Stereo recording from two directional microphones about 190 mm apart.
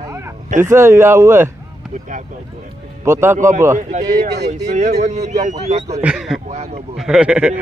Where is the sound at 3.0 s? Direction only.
15° right (ahead or behind).